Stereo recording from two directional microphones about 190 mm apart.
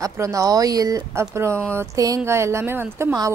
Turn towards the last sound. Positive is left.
turn(degrees=-15)  # may be behind; listen again after turning